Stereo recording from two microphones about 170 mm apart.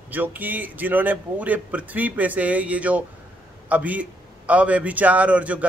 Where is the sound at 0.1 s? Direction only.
10° right (ahead or behind).